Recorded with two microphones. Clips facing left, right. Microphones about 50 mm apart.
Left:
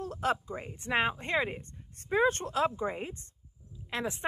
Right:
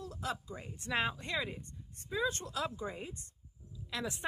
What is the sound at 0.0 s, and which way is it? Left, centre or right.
Speech, left.